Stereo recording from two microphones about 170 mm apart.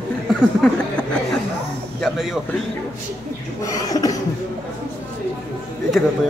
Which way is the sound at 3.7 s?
20° left (ahead or behind).